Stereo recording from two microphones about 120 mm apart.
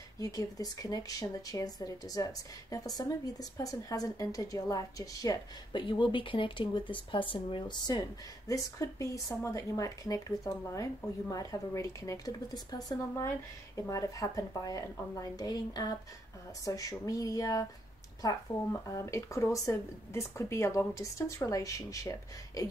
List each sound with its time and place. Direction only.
0.2 s speech: 30° left (ahead or behind)
8.7 s speech: 25° left (ahead or behind)